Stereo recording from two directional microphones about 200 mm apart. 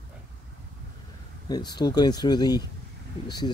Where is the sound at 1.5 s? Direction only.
20° left (ahead or behind).